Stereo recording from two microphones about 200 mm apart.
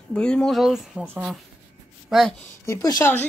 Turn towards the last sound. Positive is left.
turn(degrees=10)  # may be behind; listen again after turning